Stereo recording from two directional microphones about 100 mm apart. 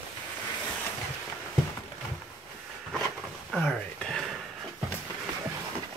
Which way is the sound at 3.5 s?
5° left (ahead or behind).